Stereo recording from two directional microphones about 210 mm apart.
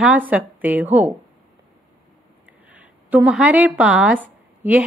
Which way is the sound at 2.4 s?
5° right (ahead or behind).